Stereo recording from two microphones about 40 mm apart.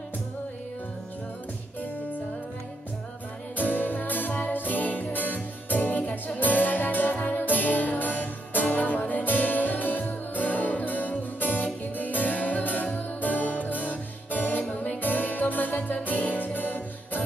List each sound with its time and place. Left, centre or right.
3.5 s music: left
14.6 s music: left